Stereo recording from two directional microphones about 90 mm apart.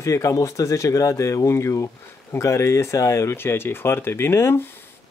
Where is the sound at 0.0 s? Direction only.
35° left (ahead or behind).